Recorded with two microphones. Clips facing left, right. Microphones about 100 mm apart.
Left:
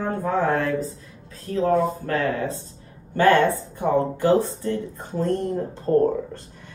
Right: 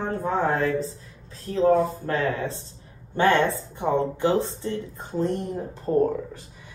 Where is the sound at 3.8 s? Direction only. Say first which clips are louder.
Left 2 dB; 20° right (ahead or behind).